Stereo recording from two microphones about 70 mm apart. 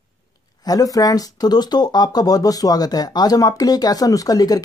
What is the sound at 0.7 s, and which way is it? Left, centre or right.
Speech, left.